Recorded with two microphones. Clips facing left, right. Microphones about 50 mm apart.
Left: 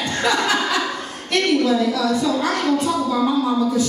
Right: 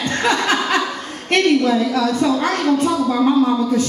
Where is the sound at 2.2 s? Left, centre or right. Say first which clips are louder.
Right 2 dB; right.